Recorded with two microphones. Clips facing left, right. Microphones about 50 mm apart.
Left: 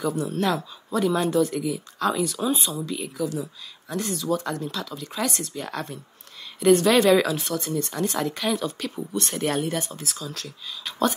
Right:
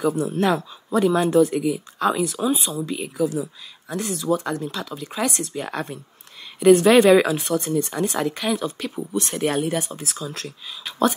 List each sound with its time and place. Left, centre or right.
0.0 s speech: centre
0.3 s speech: centre
1.0 s speech: centre
1.3 s speech: centre